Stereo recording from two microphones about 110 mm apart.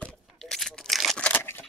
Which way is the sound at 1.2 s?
20° left (ahead or behind).